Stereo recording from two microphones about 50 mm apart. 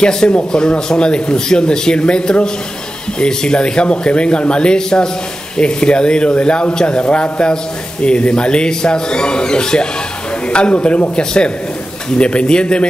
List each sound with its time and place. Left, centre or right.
0.0 s speech: centre